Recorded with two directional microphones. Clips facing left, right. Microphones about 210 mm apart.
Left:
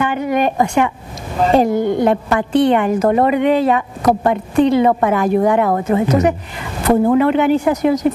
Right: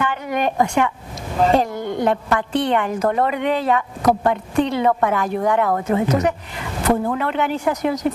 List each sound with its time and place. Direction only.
0.0 s a woman's voice: 10° left (ahead or behind)
4.0 s speech: 25° left (ahead or behind)
4.3 s a woman's voice: 10° left (ahead or behind)
6.0 s a woman's voice: 10° left (ahead or behind)